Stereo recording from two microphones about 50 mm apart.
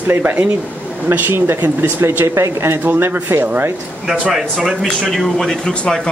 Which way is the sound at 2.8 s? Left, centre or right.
Right.